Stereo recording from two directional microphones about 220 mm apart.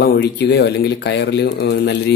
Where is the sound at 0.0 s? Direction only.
50° left (ahead or behind).